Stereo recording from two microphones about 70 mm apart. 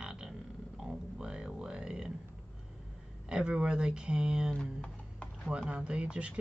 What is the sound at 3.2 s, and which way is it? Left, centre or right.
Speech, centre.